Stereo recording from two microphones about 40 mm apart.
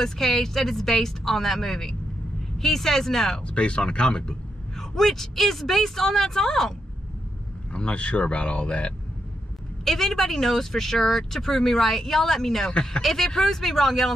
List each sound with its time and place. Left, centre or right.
0.0 s speech: centre
3.3 s speech: left
4.7 s speech: centre
7.7 s speech: left
9.8 s speech: centre